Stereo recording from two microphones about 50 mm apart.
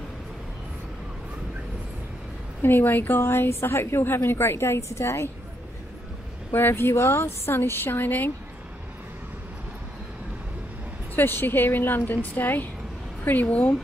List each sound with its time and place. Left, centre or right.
2.6 s a woman's voice: left
6.7 s a woman's voice: left
11.1 s a woman's voice: left